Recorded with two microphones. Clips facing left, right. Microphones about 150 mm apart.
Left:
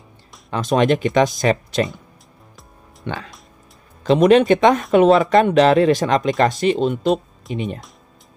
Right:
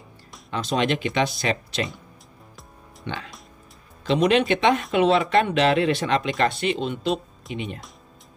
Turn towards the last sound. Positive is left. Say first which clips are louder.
# left 6 dB
turn(degrees=45)  # may be behind; listen again after turning